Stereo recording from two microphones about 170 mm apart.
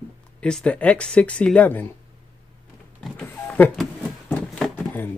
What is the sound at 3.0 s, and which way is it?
Printer, 10° left (ahead or behind).